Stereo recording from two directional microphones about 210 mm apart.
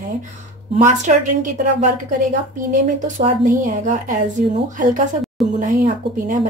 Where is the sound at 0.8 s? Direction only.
35° right (ahead or behind).